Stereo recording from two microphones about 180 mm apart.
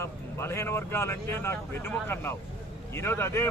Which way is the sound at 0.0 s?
15° left (ahead or behind).